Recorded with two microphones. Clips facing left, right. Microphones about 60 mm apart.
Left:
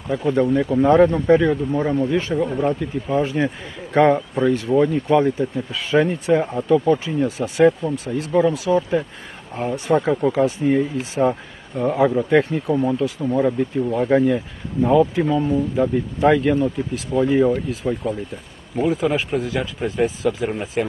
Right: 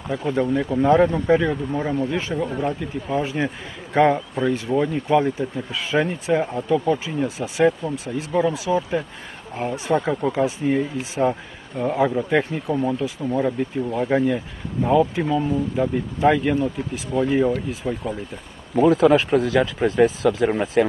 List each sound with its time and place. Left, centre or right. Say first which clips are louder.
0.1 s speech: left 3 dB; centre
19.3 s speech: right 4 dB; right
20.2 s speech: right 2 dB; centre